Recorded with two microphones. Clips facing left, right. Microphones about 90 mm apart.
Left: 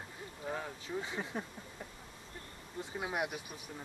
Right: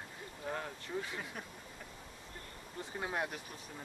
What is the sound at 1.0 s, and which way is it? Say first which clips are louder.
Speech: left 4 dB; 25° left (ahead or behind).